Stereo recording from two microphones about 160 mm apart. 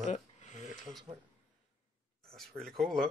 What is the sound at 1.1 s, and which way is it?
Speech, 30° right (ahead or behind).